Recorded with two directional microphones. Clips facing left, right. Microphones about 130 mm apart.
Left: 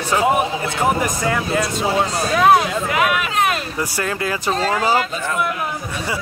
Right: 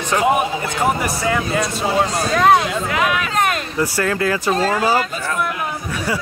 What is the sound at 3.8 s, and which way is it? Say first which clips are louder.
Speech: right 7 dB; 20° left (ahead or behind).